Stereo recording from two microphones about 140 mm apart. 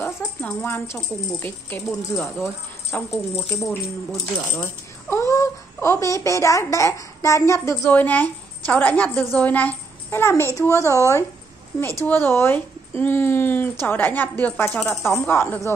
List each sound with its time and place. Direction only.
0.0 s a sound: 10° left (ahead or behind)
1.4 s speech: 15° left (ahead or behind)
2.3 s speech: 20° left (ahead or behind)
3.1 s speech: centre (ahead or behind)
4.5 s speech: 15° left (ahead or behind)